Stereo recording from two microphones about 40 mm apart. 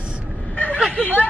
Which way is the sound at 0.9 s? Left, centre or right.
Left.